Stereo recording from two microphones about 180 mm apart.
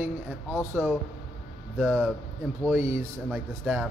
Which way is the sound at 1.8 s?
5° left (ahead or behind).